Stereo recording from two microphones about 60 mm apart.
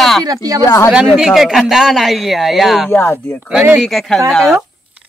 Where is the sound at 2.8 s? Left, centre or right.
Left.